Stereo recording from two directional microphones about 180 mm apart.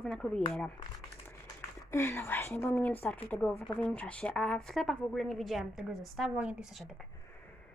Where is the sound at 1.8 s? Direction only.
15° left (ahead or behind); by 6.9 s 5° right (ahead or behind).